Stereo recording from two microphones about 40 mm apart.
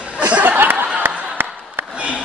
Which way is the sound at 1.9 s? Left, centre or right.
Centre.